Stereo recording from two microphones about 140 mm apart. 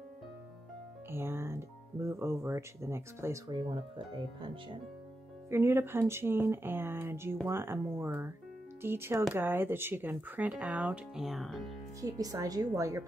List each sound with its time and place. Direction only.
1.1 s speech: 15° right (ahead or behind)
3.5 s speech: 35° right (ahead or behind)
5.5 s speech: 20° right (ahead or behind); by 11.7 s centre (ahead or behind)
12.0 s speech: 25° right (ahead or behind)